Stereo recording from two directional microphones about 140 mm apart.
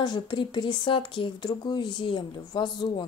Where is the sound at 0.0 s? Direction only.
35° left (ahead or behind).